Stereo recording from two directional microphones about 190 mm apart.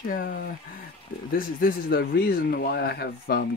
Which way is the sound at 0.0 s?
50° left (ahead or behind).